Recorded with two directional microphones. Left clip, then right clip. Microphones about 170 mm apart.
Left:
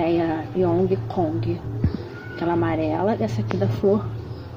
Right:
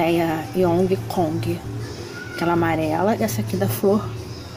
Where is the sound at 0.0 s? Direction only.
10° right (ahead or behind).